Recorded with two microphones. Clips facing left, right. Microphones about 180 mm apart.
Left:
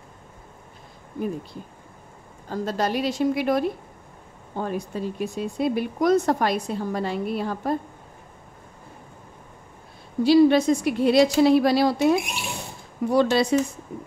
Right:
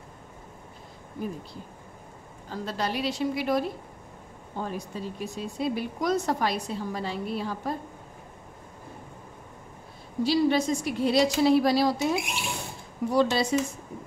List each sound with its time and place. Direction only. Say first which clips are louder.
2.5 s speech: left 5 dB; 45° left (ahead or behind)
10.2 s speech: left 7 dB; 60° left (ahead or behind)